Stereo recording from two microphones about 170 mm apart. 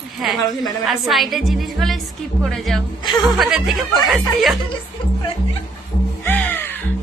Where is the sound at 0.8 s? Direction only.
Centre (ahead or behind).